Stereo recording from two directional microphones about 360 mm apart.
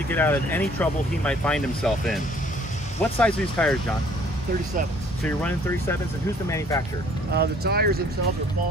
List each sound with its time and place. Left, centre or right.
0.1 s speech: centre
5.2 s speech: centre
7.3 s speech: right